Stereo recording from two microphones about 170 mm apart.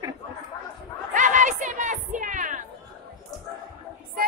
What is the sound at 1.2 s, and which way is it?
Music, 50° right (ahead or behind).